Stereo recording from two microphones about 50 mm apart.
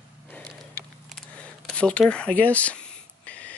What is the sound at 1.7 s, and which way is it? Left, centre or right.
Speech, left.